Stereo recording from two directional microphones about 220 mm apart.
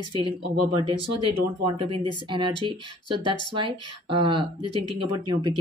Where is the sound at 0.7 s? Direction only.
20° right (ahead or behind).